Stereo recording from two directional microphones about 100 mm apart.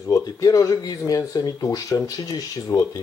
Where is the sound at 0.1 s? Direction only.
35° left (ahead or behind).